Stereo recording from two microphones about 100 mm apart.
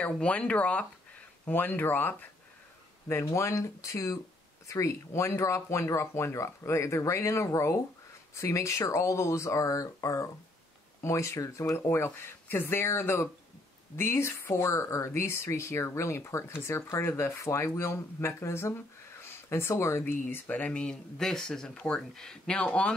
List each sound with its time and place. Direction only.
0.0 s speech: 15° left (ahead or behind)